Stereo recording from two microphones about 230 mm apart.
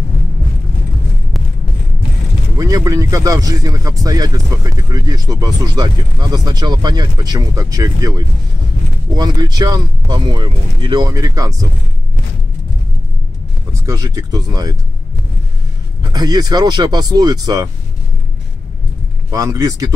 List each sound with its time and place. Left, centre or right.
2.5 s speech: centre
13.8 s speech: centre
16.0 s speech: centre
19.3 s speech: centre